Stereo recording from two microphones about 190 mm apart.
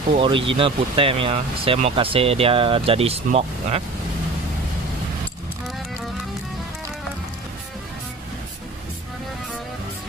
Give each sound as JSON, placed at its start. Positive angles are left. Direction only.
{"t": 0.1, "sound": "speech", "side_deg": -25}